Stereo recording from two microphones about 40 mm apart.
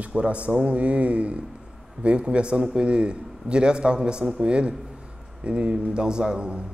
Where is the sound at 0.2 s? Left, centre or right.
Right.